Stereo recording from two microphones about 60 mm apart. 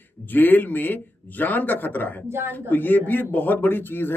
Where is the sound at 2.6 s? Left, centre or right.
Left.